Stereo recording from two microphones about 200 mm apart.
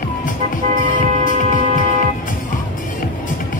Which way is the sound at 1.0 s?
40° right (ahead or behind).